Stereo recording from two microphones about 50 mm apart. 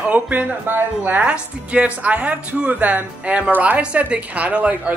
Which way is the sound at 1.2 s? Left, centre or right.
Right.